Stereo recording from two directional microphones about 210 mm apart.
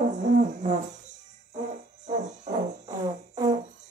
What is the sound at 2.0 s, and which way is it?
Music, 35° right (ahead or behind).